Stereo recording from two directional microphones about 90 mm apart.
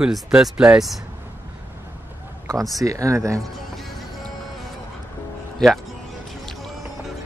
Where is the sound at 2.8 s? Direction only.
40° right (ahead or behind).